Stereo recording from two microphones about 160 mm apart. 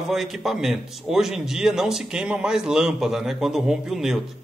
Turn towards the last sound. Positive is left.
turn(degrees=0)  # may be behind; listen again after turning